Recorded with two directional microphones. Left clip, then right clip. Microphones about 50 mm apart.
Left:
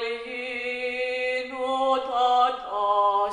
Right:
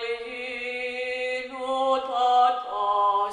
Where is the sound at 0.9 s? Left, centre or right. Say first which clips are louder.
Left 3 dB; right.